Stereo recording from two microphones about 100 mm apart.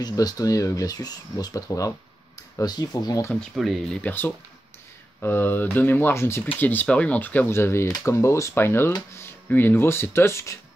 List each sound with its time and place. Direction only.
0.0 s speech: 40° left (ahead or behind)
2.6 s speech: 40° left (ahead or behind)
3.5 s speech: centre (ahead or behind)
4.0 s speech: 20° left (ahead or behind)